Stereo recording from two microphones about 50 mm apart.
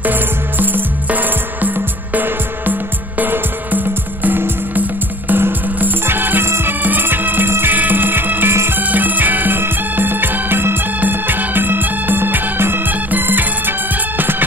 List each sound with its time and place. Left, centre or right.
0.0 s music: right
6.4 s music: right
6.8 s music: right
7.7 s music: right